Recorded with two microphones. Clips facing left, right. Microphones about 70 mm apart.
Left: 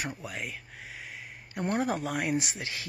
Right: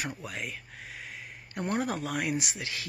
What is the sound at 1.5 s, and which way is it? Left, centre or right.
Speech, left.